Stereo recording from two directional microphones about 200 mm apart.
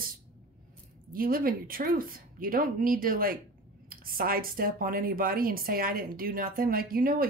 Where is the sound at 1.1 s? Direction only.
45° right (ahead or behind).